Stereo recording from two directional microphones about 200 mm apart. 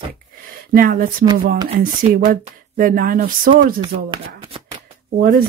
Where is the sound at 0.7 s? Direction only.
45° right (ahead or behind).